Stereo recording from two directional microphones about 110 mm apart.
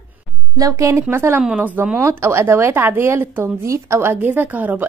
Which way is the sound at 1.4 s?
10° right (ahead or behind).